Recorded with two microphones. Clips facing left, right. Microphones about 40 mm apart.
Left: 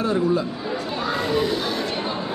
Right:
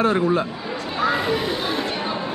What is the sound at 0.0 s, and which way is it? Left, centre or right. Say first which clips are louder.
Speech: right 2 dB; right.